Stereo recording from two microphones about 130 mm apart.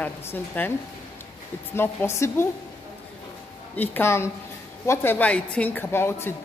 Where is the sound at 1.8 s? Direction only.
20° left (ahead or behind).